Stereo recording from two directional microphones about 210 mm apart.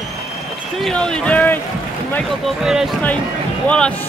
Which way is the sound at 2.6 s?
Centre (ahead or behind).